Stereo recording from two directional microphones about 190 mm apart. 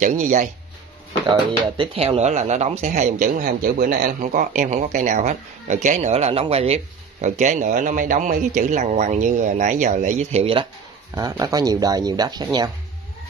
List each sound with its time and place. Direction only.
0.0 s speech: 40° right (ahead or behind)
1.8 s speech: 30° right (ahead or behind)